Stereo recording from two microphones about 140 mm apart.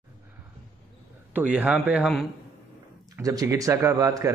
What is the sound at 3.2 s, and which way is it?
Speech, 25° right (ahead or behind).